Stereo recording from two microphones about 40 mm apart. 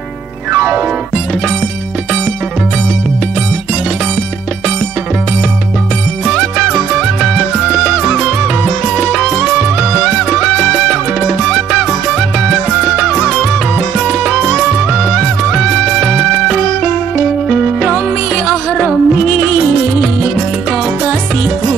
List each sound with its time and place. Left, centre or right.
0.5 s music: right
7.2 s music: centre
8.9 s music: centre
9.4 s music: right
10.3 s music: centre
13.9 s music: right
14.9 s music: centre
15.5 s music: centre
17.5 s music: centre
18.3 s music: centre
18.9 s music: centre